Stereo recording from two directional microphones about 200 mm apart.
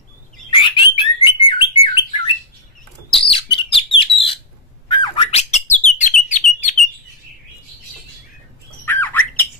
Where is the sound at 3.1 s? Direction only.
25° left (ahead or behind).